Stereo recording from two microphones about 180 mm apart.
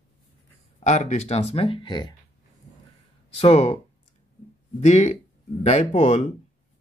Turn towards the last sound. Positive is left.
turn(degrees=40)  # may be behind; listen again after turning